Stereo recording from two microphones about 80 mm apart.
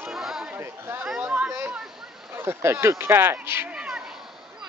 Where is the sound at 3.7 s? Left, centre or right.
Centre.